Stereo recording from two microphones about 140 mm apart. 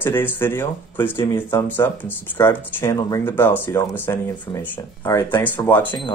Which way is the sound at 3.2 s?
15° left (ahead or behind).